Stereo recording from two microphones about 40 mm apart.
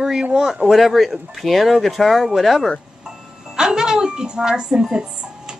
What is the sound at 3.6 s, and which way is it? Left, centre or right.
A woman's voice, centre.